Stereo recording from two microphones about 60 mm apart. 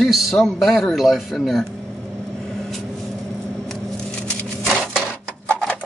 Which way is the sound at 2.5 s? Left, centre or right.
Centre.